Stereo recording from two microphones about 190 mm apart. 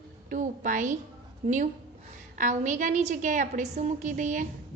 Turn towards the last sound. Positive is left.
turn(degrees=-40)  # may be behind; listen again after turning